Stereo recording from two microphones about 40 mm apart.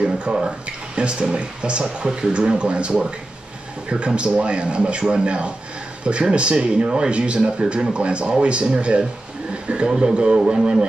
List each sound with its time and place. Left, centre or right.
0.3 s speech: right